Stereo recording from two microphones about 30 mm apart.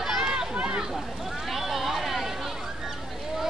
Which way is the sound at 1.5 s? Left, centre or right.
Centre.